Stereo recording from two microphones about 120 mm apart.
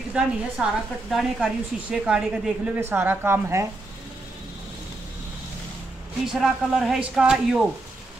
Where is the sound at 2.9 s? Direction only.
20° right (ahead or behind).